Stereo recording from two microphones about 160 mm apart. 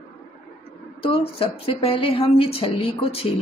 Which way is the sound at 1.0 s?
35° left (ahead or behind).